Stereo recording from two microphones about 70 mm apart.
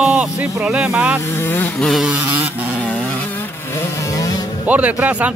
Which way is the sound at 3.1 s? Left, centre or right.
Left.